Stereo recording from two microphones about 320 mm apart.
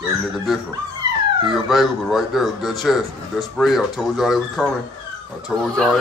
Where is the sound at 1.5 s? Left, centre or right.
Centre.